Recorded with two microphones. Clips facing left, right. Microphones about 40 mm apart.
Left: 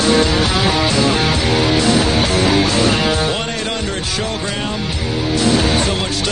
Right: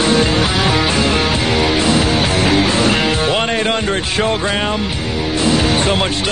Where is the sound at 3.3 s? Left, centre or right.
Right.